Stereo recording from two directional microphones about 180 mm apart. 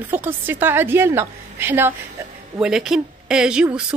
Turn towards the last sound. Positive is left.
turn(degrees=-5)  # may be behind; listen again after turning